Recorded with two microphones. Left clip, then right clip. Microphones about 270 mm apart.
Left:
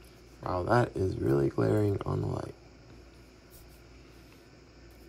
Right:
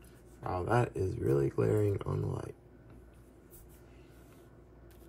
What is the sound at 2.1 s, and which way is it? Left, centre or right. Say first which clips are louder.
Speech: left 4 dB; left.